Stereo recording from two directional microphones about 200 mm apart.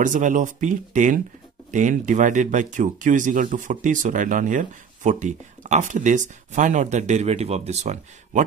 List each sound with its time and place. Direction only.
0.0 s speech: 40° right (ahead or behind)